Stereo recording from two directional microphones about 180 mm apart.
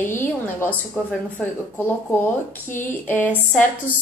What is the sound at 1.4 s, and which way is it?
A woman's voice, 10° left (ahead or behind).